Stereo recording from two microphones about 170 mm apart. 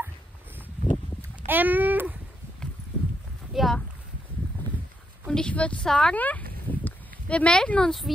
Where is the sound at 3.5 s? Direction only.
Centre (ahead or behind).